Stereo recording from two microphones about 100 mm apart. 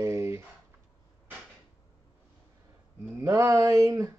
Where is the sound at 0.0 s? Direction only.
30° right (ahead or behind).